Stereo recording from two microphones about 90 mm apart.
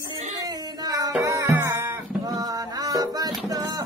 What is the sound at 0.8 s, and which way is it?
Music, 45° right (ahead or behind).